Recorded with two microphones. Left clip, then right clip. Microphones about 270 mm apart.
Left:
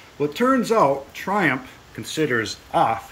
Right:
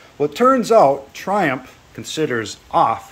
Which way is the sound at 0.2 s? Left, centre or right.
Centre.